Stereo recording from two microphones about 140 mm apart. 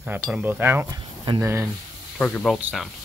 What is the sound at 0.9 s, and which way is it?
Speech, 35° right (ahead or behind).